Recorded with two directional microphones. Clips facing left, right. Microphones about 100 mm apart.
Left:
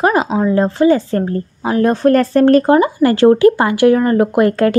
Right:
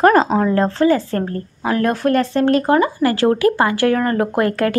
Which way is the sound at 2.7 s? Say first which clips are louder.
Left 4 dB; 20° left (ahead or behind).